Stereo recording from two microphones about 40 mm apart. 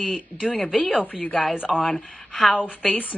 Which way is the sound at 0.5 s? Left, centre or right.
Centre.